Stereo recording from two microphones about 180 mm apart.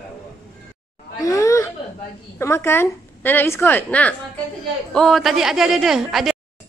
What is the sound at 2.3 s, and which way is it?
A woman's voice, 15° left (ahead or behind).